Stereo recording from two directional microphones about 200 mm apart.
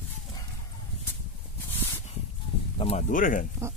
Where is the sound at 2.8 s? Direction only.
35° left (ahead or behind).